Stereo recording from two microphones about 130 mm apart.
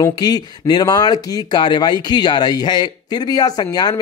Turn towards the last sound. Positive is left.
turn(degrees=30)  # may be behind; listen again after turning